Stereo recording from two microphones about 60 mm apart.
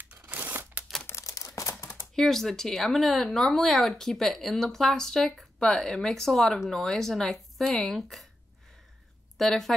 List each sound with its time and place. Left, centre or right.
0.1 s a sound: right
1.1 s typewriter: left
2.1 s speech: centre
9.4 s speech: centre